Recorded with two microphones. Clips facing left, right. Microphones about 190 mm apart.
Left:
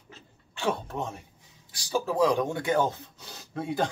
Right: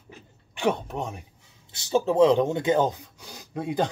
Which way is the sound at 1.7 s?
25° right (ahead or behind).